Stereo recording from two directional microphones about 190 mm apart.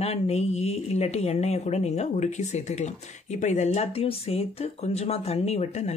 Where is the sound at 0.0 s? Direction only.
35° left (ahead or behind).